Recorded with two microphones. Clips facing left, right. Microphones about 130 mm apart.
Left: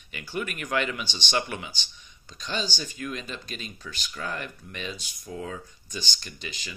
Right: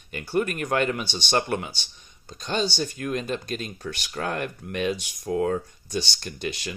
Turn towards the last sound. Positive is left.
turn(degrees=-65)  # may be behind; listen again after turning